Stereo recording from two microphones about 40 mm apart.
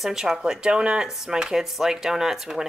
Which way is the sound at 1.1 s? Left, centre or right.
Centre.